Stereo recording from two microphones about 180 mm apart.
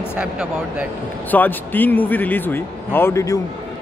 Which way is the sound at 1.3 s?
10° left (ahead or behind).